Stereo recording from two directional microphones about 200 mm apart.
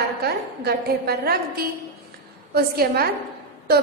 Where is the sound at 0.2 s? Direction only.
50° right (ahead or behind).